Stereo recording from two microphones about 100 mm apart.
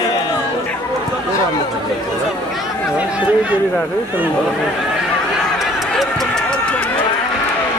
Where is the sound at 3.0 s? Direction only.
15° right (ahead or behind).